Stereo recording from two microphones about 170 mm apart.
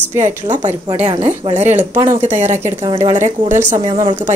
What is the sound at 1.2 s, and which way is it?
A woman's voice, 40° right (ahead or behind).